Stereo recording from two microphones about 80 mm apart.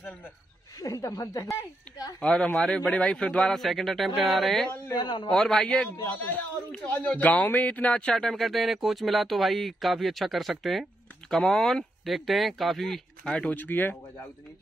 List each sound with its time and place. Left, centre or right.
0.7 s speech: left
2.2 s a man's voice: centre
4.6 s speech: left
5.0 s a man's voice: left
5.3 s a man's voice: centre
6.1 s speech: left; by 13.0 s centre
13.2 s a man's voice: centre
13.6 s speech: left